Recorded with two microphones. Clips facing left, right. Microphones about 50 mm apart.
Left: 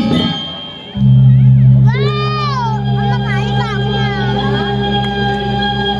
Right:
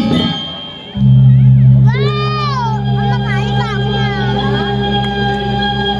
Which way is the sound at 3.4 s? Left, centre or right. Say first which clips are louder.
Even; centre.